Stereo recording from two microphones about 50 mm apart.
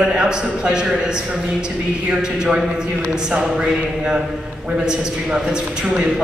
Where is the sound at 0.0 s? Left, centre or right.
Centre.